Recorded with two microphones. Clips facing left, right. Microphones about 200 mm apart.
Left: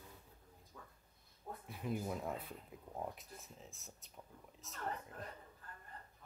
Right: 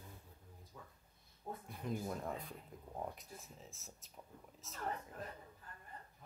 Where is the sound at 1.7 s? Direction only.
5° left (ahead or behind).